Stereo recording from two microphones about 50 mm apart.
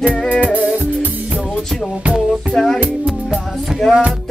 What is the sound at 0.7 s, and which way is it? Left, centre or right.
Music, right.